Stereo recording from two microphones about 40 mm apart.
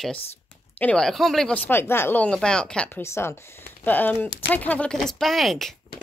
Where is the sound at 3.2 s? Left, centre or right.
Left.